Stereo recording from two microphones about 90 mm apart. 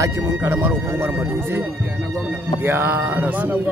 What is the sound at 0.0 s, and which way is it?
A man's voice, 35° right (ahead or behind).